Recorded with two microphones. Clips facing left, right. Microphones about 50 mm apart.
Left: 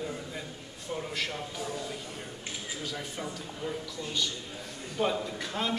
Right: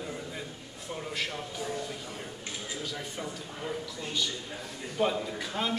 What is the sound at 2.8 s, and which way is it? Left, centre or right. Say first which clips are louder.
A man's voice: left 2 dB; centre.